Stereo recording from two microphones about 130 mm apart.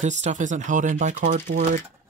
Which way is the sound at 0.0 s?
65° right (ahead or behind).